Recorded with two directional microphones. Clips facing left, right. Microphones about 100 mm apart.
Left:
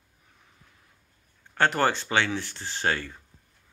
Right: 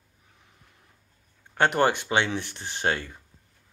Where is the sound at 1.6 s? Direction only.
20° right (ahead or behind).